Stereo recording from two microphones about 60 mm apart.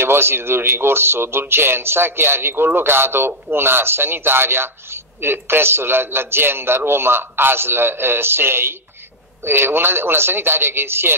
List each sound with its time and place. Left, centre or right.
0.0 s speech: right